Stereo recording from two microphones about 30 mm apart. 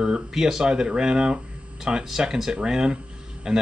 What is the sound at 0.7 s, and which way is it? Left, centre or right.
Speech, right.